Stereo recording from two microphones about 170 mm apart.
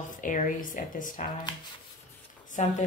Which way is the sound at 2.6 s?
45° left (ahead or behind).